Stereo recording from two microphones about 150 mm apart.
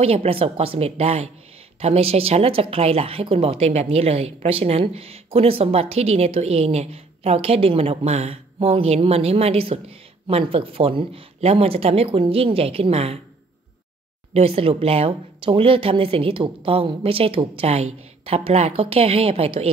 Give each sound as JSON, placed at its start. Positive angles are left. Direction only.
{"t": 0.0, "sound": "a woman's voice", "side_deg": -40}
{"t": 14.3, "sound": "speech", "side_deg": -40}